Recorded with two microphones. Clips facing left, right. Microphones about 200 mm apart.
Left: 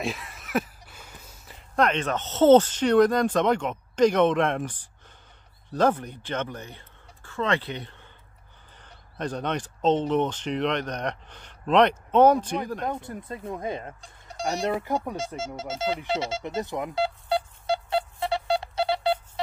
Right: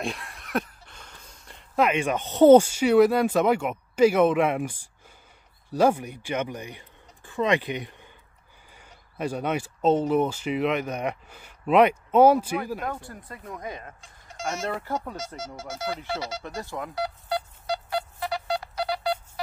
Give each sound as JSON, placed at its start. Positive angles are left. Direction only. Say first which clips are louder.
{"t": 0.0, "sound": "speech", "louder": "left 1 dB", "side_deg": 0}
{"t": 12.8, "sound": "speech", "louder": "left 3 dB", "side_deg": 20}
{"t": 14.4, "sound": "speech", "louder": "left 4 dB", "side_deg": 20}
{"t": 15.1, "sound": "a sound", "louder": "left 4 dB", "side_deg": 25}